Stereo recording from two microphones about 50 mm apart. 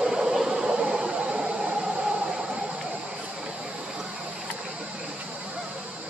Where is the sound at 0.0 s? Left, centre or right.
Centre.